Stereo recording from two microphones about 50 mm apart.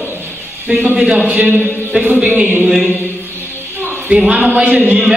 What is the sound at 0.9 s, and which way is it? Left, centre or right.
Speech, right.